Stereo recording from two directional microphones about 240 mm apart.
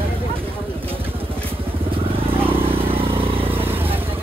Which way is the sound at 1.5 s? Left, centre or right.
Right.